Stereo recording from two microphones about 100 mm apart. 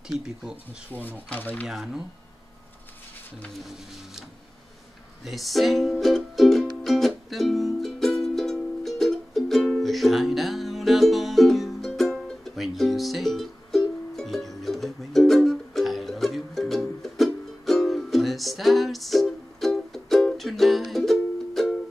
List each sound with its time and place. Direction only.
0.1 s speech: 5° right (ahead or behind)
1.3 s speech: 15° left (ahead or behind)
1.7 s speech: 5° right (ahead or behind)
5.2 s music: centre (ahead or behind)